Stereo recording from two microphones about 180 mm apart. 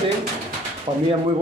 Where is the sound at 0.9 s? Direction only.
25° right (ahead or behind).